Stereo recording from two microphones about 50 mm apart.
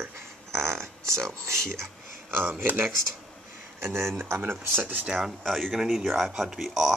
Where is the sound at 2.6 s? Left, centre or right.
Right.